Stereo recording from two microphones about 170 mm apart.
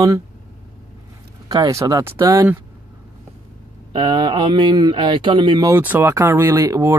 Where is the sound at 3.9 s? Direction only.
25° right (ahead or behind).